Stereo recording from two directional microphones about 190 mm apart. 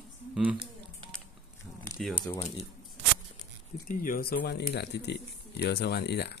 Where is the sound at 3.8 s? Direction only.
45° left (ahead or behind).